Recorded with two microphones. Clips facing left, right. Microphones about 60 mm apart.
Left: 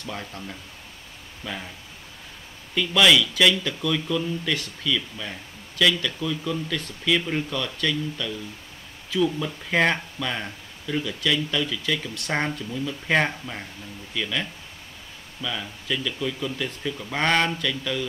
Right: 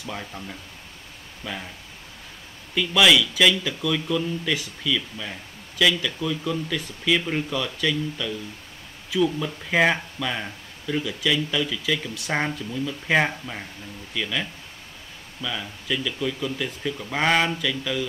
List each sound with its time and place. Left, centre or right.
0.0 s speech: centre
2.7 s speech: centre